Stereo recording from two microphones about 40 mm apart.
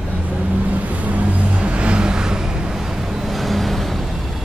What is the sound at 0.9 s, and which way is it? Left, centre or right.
Vehicle, right.